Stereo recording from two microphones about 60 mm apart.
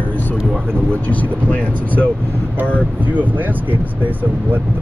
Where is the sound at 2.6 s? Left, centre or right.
Right.